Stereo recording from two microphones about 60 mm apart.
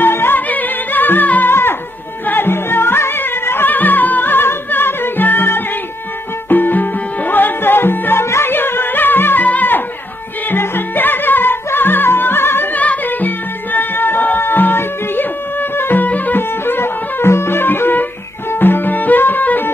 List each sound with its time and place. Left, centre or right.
0.0 s music: left
1.5 s dog: left
2.2 s music: left
12.7 s music: left